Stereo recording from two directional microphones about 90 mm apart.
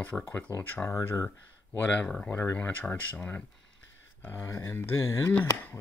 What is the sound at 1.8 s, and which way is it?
Speech, 10° left (ahead or behind).